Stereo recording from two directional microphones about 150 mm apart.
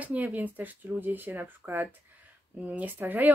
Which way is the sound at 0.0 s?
10° right (ahead or behind).